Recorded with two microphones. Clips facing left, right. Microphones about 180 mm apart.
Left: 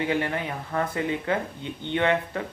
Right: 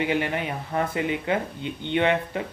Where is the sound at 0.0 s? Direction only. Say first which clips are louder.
Right 1 dB; 15° right (ahead or behind).